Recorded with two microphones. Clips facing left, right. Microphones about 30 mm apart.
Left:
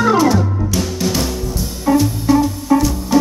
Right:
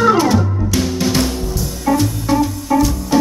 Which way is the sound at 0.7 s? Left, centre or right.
Centre.